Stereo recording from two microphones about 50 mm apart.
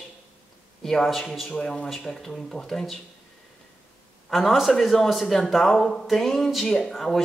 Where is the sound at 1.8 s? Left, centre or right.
Centre.